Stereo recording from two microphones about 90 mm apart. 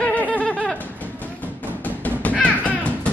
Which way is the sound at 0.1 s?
15° left (ahead or behind).